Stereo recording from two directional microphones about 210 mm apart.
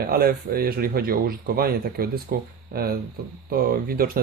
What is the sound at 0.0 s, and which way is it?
Speech, 45° right (ahead or behind).